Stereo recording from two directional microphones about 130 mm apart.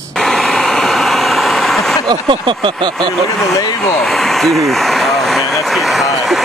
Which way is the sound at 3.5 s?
25° left (ahead or behind).